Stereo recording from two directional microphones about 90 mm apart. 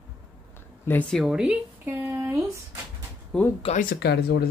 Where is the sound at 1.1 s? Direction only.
5° right (ahead or behind).